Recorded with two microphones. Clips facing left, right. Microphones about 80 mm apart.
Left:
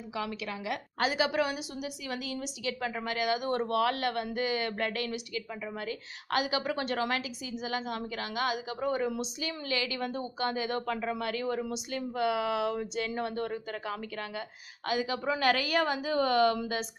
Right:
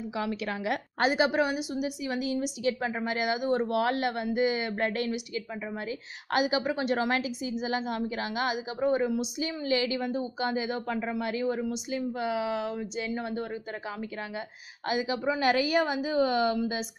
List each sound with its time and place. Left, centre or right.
0.5 s a woman's voice: right
3.4 s a woman's voice: centre
3.7 s a woman's voice: right
7.1 s a woman's voice: right; by 16.8 s centre